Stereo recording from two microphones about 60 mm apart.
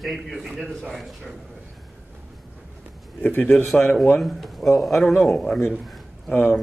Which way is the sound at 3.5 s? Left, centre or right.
Centre.